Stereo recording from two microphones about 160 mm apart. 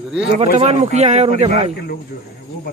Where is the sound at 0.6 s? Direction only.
45° right (ahead or behind).